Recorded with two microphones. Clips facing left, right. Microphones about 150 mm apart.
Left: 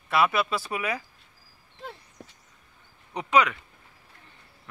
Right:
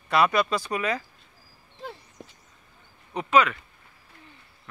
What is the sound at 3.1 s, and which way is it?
Speech, 15° left (ahead or behind).